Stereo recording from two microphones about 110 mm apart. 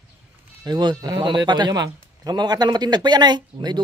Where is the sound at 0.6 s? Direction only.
40° right (ahead or behind).